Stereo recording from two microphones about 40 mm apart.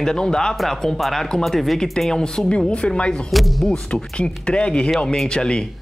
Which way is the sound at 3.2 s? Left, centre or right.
Centre.